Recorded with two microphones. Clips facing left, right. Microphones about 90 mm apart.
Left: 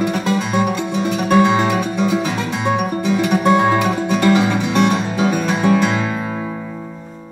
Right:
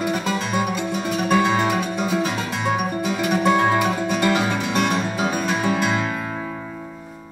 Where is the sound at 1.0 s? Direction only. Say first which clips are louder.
Left 6 dB; 45° left (ahead or behind).